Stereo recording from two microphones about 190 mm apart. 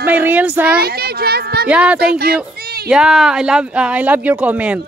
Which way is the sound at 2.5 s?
55° right (ahead or behind).